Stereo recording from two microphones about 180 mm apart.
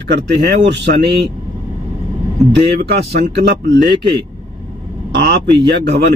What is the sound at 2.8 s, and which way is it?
Speech, 65° right (ahead or behind).